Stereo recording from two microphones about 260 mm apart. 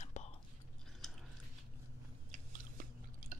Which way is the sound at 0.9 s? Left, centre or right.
Centre.